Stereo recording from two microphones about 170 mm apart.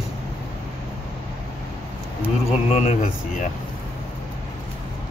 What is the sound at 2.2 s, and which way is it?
Speech, 40° left (ahead or behind).